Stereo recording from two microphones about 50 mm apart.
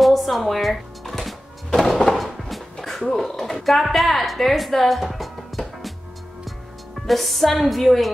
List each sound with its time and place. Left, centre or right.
0.0 s music: centre
1.8 s a sound: centre
7.1 s speech: centre